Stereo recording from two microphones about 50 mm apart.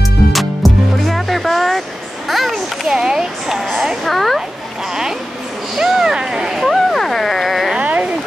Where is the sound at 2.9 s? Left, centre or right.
Centre.